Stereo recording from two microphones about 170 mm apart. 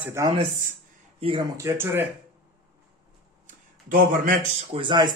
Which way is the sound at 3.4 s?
55° right (ahead or behind).